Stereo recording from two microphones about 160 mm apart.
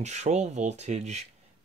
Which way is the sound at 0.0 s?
45° right (ahead or behind).